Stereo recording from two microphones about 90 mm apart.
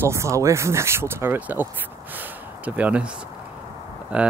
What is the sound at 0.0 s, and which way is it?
Speech, 35° right (ahead or behind).